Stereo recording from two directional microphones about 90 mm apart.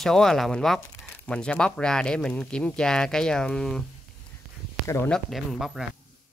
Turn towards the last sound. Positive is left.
turn(degrees=0)  # may be behind; listen again after turning